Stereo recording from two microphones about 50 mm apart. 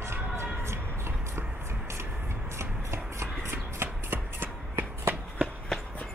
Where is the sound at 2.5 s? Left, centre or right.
Right.